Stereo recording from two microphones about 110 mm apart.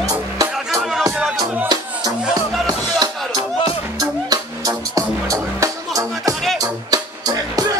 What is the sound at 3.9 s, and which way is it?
Music, 35° right (ahead or behind).